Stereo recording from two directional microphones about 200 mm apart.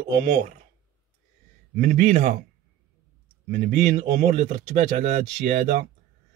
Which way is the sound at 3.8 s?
35° right (ahead or behind).